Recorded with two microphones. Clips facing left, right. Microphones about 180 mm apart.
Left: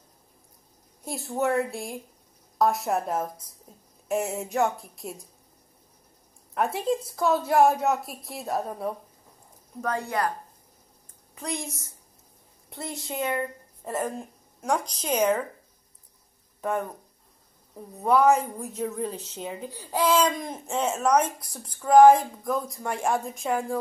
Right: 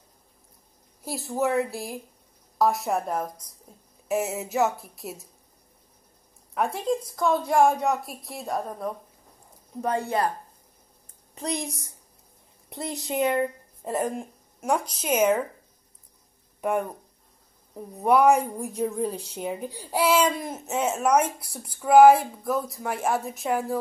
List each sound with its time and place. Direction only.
1.0 s a woman's voice: centre (ahead or behind)
6.5 s a woman's voice: centre (ahead or behind)
9.8 s a woman's voice: 25° right (ahead or behind)
11.3 s a woman's voice: 20° right (ahead or behind)
16.6 s a woman's voice: 15° right (ahead or behind)